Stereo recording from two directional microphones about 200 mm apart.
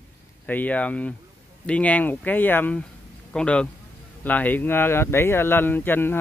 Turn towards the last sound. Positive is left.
turn(degrees=10)  # may be behind; listen again after turning